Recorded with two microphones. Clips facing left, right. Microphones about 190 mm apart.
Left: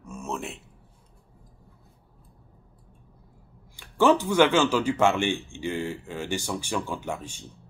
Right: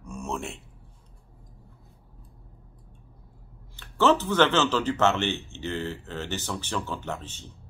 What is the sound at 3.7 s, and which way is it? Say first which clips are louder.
Speech: left 2 dB; 10° left (ahead or behind).